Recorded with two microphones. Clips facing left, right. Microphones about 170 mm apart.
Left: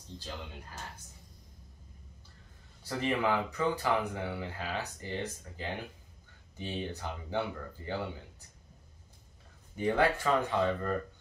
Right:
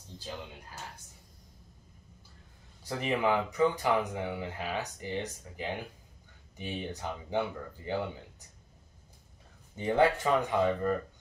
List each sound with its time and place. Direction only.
2.8 s speech: 15° right (ahead or behind)
9.8 s speech: 20° right (ahead or behind)